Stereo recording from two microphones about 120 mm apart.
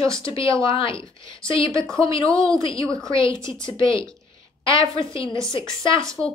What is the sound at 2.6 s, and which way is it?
Speech, 50° left (ahead or behind).